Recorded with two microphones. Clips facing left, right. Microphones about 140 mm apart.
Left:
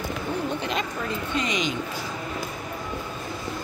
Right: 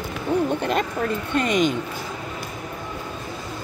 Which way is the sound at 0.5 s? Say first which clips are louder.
Right 5 dB; 50° right (ahead or behind).